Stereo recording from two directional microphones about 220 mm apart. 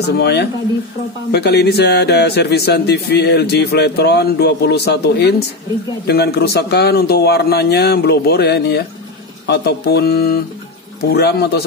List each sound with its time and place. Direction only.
0.2 s speech: 50° left (ahead or behind)